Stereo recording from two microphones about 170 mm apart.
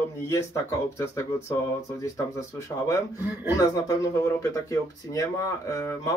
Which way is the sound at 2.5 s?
20° left (ahead or behind).